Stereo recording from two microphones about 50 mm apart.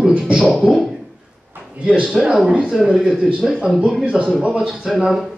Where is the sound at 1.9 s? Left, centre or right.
Centre.